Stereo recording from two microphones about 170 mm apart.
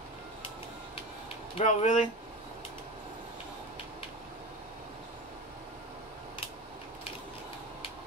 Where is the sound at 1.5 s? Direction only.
40° left (ahead or behind).